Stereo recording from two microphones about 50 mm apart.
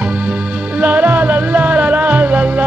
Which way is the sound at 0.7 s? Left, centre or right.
Right.